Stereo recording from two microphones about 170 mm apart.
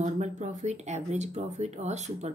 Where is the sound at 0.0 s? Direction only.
45° right (ahead or behind).